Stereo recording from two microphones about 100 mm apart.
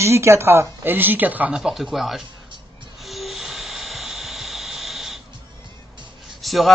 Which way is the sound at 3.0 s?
Centre (ahead or behind).